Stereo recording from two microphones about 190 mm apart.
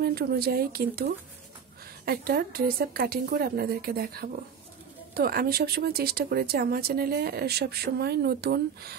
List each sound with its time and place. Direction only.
0.0 s speech: 55° right (ahead or behind)